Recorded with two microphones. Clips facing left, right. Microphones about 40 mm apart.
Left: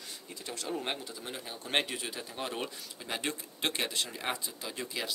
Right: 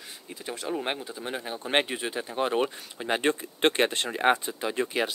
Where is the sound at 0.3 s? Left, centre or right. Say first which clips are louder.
Right 5 dB; right.